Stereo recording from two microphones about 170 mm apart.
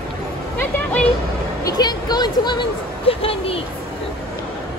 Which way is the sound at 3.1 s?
35° left (ahead or behind).